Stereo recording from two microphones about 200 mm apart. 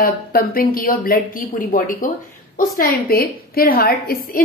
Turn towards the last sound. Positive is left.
turn(degrees=50)  # may be behind; listen again after turning